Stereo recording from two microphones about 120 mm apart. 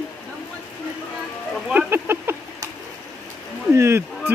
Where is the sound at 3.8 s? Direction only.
20° right (ahead or behind).